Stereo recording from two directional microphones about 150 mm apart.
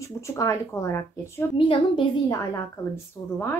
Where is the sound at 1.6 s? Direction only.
35° left (ahead or behind).